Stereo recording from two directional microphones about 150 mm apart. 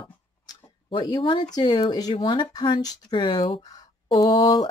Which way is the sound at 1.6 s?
30° left (ahead or behind).